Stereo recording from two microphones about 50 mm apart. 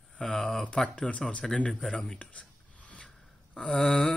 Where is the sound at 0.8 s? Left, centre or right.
Centre.